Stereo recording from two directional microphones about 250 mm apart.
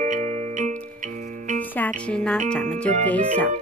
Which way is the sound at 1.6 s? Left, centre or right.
Centre.